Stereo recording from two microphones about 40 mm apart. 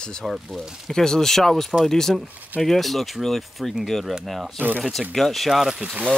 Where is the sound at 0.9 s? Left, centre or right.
Centre.